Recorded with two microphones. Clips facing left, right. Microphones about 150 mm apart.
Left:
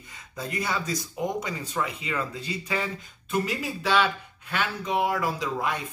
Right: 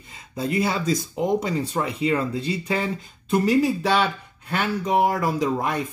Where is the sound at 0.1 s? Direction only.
30° right (ahead or behind).